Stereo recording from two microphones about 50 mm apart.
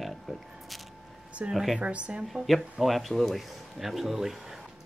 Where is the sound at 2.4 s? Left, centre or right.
Centre.